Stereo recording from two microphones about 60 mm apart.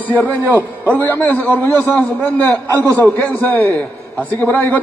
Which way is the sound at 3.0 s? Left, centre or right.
Left.